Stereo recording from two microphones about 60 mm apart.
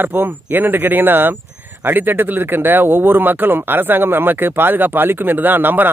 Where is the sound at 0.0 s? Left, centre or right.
Right.